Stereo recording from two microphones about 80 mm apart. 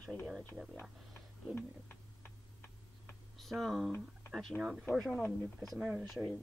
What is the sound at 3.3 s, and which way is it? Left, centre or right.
Speech, centre.